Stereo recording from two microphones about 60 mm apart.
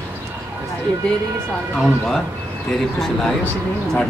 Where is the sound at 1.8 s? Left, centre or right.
Centre.